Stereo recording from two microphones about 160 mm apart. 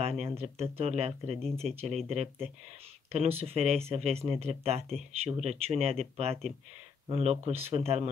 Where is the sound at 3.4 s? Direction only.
40° right (ahead or behind).